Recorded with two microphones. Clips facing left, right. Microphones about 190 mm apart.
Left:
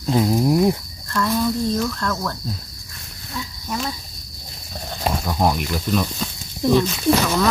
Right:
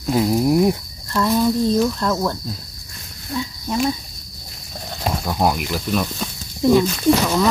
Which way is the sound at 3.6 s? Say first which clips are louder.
Right 6 dB; 20° right (ahead or behind).